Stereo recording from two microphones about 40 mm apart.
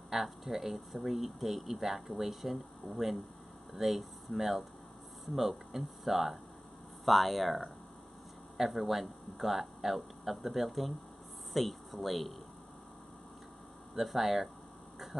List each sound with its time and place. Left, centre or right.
0.1 s speech: centre
13.9 s speech: centre